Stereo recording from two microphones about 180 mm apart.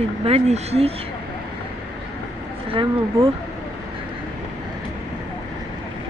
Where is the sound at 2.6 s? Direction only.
30° right (ahead or behind).